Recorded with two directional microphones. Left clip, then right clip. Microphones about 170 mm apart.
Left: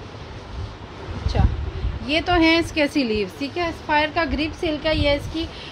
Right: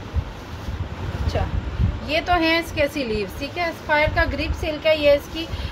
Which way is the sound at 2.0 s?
50° left (ahead or behind).